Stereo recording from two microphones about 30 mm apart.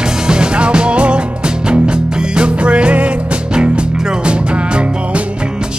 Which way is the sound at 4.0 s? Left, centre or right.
Right.